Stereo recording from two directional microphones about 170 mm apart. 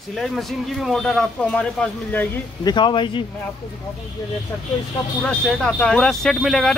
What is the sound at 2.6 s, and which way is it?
Speech, 25° left (ahead or behind).